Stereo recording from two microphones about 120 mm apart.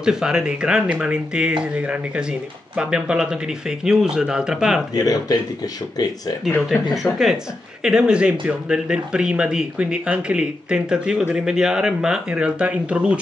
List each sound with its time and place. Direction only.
0.0 s speech: 5° right (ahead or behind)
4.9 s speech: 30° left (ahead or behind)
6.7 s speech: centre (ahead or behind)